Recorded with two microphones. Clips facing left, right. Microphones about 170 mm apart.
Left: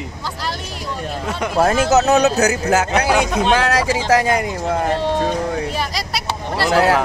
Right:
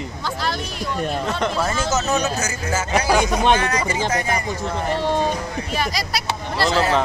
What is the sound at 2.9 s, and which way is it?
Speech, centre (ahead or behind).